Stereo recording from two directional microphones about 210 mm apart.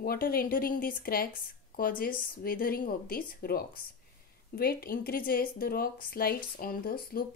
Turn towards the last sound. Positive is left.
turn(degrees=45)  # may be behind; listen again after turning